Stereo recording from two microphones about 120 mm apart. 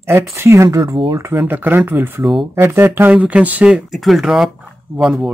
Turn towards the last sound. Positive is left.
turn(degrees=-5)  # may be behind; listen again after turning